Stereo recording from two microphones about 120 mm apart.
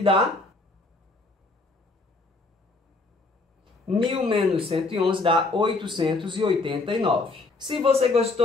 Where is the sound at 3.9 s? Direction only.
45° right (ahead or behind).